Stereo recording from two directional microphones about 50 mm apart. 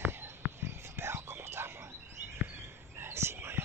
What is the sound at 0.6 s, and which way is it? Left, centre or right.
Whispering, right.